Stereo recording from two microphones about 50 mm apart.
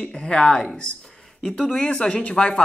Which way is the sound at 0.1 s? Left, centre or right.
Centre.